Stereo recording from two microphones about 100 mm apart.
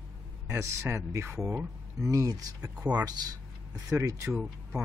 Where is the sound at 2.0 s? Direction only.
35° right (ahead or behind).